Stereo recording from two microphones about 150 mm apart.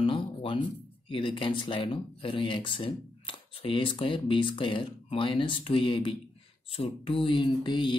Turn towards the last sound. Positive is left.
turn(degrees=30)  # may be behind; listen again after turning